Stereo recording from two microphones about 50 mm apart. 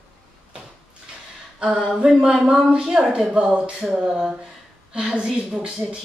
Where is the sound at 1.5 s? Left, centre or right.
Right.